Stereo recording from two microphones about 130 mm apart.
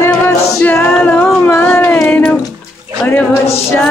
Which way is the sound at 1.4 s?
15° left (ahead or behind).